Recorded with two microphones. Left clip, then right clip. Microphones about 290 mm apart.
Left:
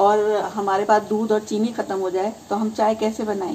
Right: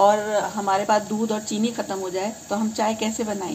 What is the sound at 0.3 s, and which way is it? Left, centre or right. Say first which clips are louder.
Speech: left 1 dB; right.